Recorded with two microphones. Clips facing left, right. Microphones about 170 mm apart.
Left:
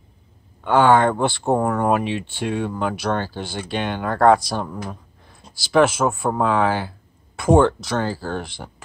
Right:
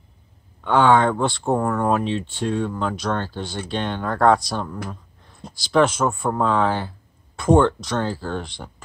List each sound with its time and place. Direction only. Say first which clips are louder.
0.7 s speech: left 1 dB; 5° left (ahead or behind)